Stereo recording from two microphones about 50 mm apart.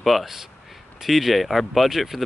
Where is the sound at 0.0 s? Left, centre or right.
Centre.